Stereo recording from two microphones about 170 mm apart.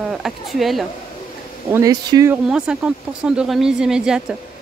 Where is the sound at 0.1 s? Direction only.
Centre (ahead or behind).